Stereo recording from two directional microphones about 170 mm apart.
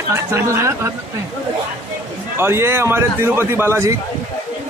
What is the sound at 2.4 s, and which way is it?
A man's voice, 15° right (ahead or behind).